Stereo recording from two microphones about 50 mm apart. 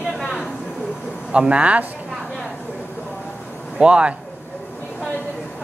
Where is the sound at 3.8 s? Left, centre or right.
Right.